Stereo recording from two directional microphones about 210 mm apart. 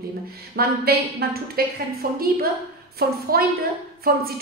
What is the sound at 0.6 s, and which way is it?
A woman's voice, 45° right (ahead or behind).